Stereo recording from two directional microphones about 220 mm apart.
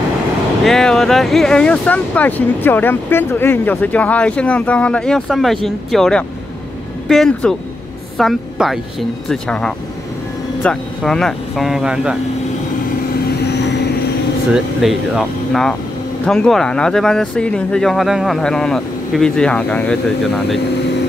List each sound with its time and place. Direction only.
0.7 s a woman's voice: centre (ahead or behind)
13.4 s vehicle: 50° left (ahead or behind)
14.5 s speech: centre (ahead or behind)